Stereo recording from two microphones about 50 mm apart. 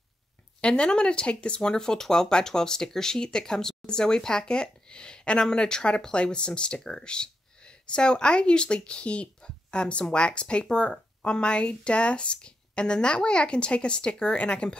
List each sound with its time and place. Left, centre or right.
0.6 s speech: left